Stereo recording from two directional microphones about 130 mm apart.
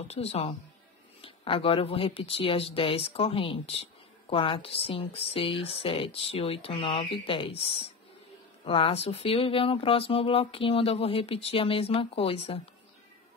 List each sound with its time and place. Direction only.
0.1 s speech: 50° left (ahead or behind)
8.6 s speech: 45° left (ahead or behind)